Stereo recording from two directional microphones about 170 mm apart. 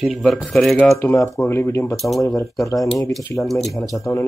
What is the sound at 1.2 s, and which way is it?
Speech, 15° left (ahead or behind).